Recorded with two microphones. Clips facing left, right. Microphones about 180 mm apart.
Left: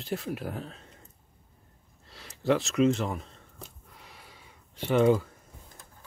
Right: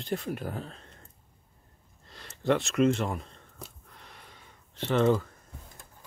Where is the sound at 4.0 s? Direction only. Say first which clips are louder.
Even; 5° left (ahead or behind).